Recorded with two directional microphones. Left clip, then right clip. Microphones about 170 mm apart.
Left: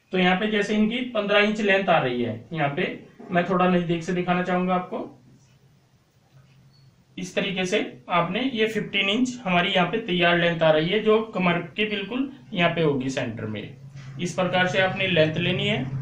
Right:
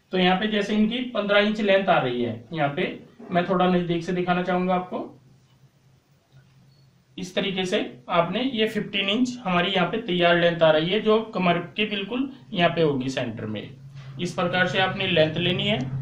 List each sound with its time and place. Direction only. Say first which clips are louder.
0.1 s speech: even; 5° left (ahead or behind)
7.3 s speech: even; 5° left (ahead or behind)